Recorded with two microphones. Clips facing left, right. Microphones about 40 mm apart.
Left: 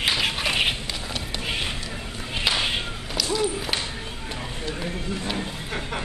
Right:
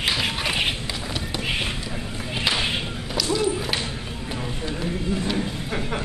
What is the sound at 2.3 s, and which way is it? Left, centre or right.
Whip, centre.